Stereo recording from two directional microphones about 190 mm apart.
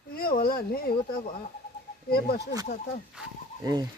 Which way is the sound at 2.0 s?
55° left (ahead or behind).